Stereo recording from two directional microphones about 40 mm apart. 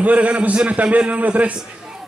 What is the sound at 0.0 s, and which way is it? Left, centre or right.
A man's voice, right.